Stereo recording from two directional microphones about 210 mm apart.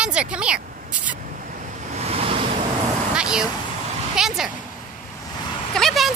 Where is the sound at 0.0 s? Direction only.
5° right (ahead or behind).